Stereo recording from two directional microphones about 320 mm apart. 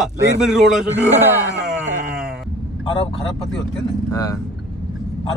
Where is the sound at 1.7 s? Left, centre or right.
Centre.